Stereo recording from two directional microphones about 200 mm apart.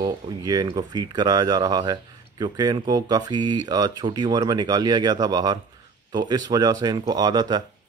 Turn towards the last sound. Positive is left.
turn(degrees=-20)  # may be behind; listen again after turning